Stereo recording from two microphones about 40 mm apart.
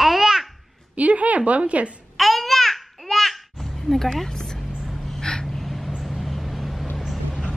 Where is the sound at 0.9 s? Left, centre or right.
Right.